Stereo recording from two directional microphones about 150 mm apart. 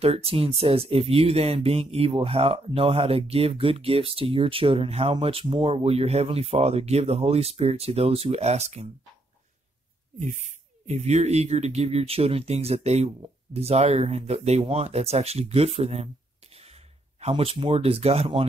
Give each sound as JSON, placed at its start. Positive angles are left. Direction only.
{"t": 0.0, "sound": "speech", "side_deg": -40}
{"t": 10.1, "sound": "speech", "side_deg": -55}